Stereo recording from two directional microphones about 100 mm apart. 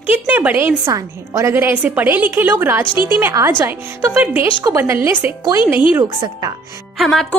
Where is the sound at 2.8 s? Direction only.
55° left (ahead or behind).